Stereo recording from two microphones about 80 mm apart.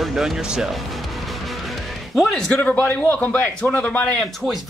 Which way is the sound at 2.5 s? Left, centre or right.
Centre.